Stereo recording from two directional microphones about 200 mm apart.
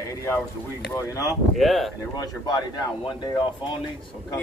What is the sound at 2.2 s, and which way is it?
Speech, 20° left (ahead or behind).